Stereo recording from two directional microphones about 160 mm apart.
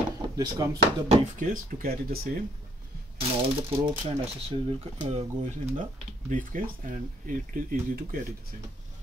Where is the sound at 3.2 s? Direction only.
35° right (ahead or behind); by 8.2 s 65° right (ahead or behind).